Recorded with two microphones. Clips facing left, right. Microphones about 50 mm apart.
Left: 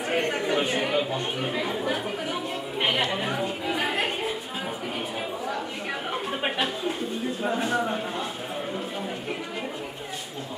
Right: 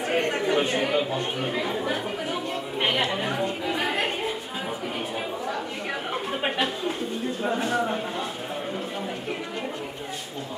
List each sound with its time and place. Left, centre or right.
0.1 s chatter: centre
6.4 s a sound: centre
7.4 s a man's voice: centre